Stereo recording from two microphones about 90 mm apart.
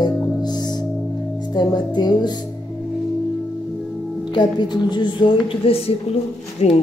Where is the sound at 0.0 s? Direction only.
50° left (ahead or behind).